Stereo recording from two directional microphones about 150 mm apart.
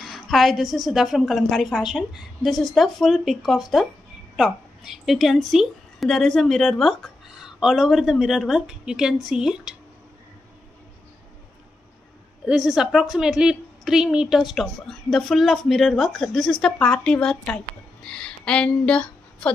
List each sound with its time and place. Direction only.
0.0 s a woman's voice: centre (ahead or behind)
12.4 s a woman's voice: 5° right (ahead or behind)